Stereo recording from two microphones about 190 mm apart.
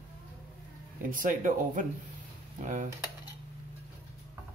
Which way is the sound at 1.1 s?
45° right (ahead or behind).